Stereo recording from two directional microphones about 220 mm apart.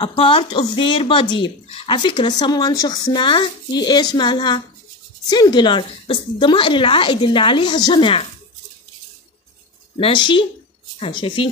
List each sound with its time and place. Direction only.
0.0 s speech: 25° left (ahead or behind)
9.9 s speech: 25° left (ahead or behind)